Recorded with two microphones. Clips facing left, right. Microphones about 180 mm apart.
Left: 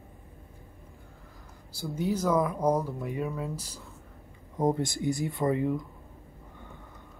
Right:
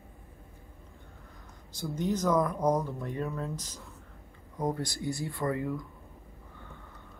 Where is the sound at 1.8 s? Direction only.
5° left (ahead or behind).